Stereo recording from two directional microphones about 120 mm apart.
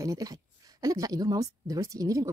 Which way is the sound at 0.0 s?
30° right (ahead or behind).